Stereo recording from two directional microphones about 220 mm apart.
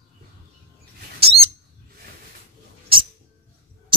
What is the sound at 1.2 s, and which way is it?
Bird, 25° right (ahead or behind).